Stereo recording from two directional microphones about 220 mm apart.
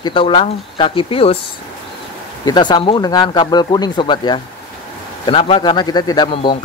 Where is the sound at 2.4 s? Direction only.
20° left (ahead or behind).